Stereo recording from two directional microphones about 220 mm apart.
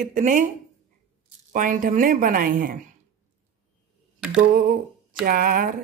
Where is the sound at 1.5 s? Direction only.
35° right (ahead or behind).